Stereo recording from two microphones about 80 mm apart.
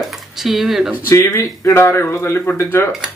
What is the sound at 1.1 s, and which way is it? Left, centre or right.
Speech, left.